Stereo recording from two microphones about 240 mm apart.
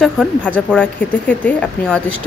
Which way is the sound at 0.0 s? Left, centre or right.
Centre.